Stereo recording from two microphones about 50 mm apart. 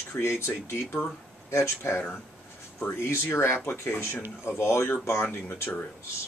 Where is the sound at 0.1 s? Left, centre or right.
Left.